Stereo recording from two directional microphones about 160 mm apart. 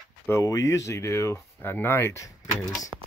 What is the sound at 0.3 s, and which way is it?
Speech, 20° left (ahead or behind).